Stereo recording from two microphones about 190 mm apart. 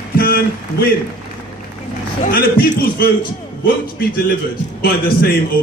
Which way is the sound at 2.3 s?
50° left (ahead or behind).